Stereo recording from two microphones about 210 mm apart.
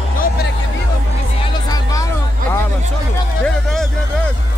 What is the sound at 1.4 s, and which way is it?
Music, 20° left (ahead or behind).